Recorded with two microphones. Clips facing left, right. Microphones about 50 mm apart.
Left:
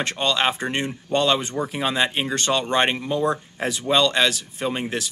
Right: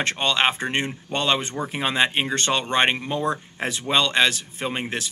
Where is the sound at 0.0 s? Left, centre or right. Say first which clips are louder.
Even; right.